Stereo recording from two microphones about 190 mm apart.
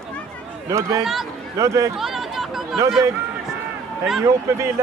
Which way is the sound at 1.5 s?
15° right (ahead or behind).